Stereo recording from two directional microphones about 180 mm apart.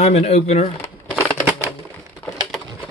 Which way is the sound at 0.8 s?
10° left (ahead or behind).